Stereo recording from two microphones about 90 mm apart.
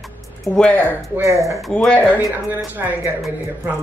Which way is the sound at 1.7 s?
10° left (ahead or behind).